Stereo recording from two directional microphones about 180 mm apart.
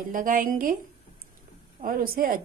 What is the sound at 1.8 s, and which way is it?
Speech, 55° right (ahead or behind).